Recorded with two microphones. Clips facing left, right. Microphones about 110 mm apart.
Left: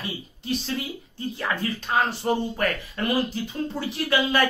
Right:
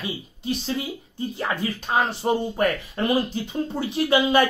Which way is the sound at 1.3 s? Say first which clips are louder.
Right 1 dB; 20° right (ahead or behind).